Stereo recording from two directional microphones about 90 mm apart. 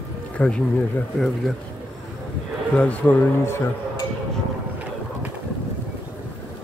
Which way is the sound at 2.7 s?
15° left (ahead or behind).